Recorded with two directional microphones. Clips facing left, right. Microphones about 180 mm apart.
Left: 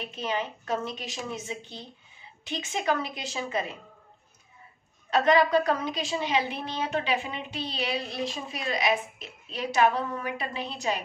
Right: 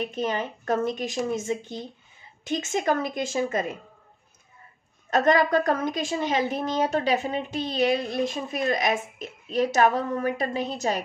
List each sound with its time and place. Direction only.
0.0 s a woman's voice: 45° right (ahead or behind)
5.1 s a woman's voice: 45° right (ahead or behind)